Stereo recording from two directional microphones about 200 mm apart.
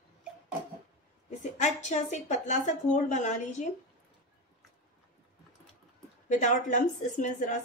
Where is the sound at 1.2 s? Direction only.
35° left (ahead or behind).